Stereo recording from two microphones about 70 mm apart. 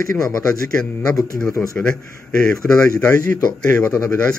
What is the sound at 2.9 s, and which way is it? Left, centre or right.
Speech, left.